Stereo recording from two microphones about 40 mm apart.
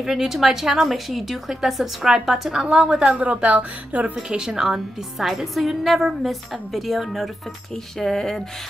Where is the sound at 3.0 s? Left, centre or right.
Right.